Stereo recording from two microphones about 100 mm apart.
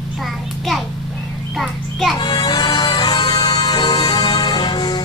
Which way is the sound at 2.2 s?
40° left (ahead or behind).